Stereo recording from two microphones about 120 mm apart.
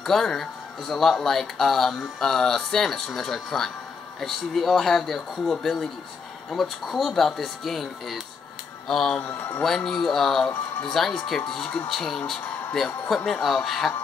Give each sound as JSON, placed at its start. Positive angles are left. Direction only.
{"t": 0.0, "sound": "speech", "side_deg": 5}
{"t": 9.2, "sound": "a man's voice", "side_deg": 20}
{"t": 9.6, "sound": "speech", "side_deg": 5}